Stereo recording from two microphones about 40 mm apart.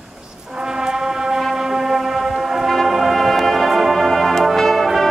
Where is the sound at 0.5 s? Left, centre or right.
Centre.